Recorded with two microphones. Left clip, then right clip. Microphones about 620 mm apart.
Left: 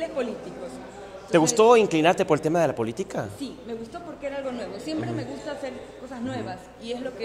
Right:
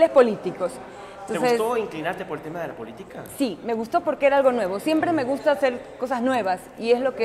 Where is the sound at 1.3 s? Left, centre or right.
Left.